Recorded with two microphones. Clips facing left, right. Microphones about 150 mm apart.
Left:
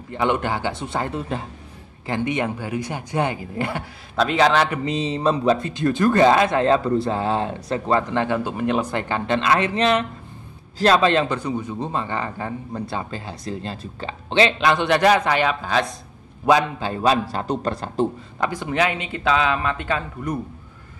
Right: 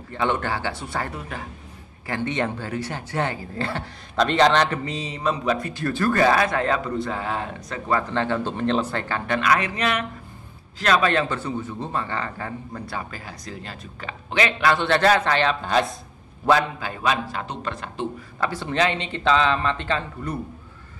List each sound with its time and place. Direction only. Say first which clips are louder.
0.1 s a man's voice: left 3 dB; 15° left (ahead or behind)
4.8 s a man's voice: left 5 dB; 25° left (ahead or behind)
8.1 s a man's voice: left 2 dB; 15° left (ahead or behind); by 11.1 s 30° left (ahead or behind)
11.1 s a man's voice: left 3 dB; 20° left (ahead or behind)
15.6 s speech: right 1 dB; centre (ahead or behind)
16.5 s speech: left 2 dB; 15° left (ahead or behind)
16.8 s a man's voice: left 5 dB; 35° left (ahead or behind)
18.4 s speech: left 1 dB; 15° left (ahead or behind)